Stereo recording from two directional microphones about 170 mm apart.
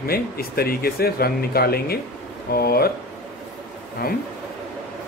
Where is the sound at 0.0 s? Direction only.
65° left (ahead or behind).